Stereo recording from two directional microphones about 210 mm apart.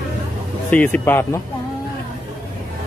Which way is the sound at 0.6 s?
5° left (ahead or behind).